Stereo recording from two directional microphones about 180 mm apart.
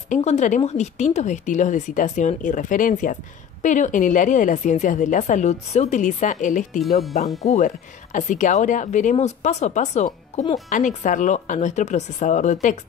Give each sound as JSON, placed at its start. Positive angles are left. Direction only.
{"t": 0.1, "sound": "a woman's voice", "side_deg": 40}